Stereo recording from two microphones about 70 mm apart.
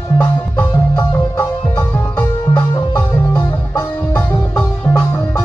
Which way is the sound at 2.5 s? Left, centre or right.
Left.